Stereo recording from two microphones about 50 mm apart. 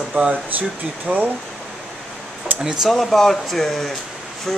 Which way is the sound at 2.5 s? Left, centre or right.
Right.